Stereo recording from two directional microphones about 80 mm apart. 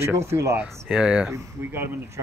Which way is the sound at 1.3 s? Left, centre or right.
Right.